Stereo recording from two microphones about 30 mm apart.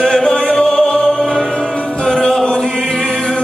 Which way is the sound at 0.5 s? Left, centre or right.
Left.